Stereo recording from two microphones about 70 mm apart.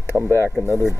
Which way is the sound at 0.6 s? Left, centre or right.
Left.